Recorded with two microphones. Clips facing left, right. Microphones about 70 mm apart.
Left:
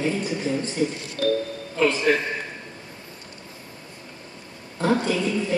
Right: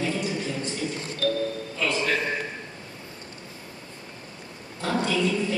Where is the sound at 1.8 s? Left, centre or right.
Left.